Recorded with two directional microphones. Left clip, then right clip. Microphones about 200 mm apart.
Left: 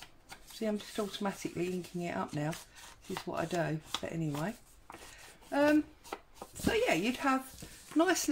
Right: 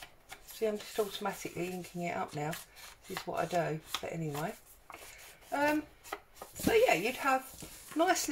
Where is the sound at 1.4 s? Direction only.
40° left (ahead or behind).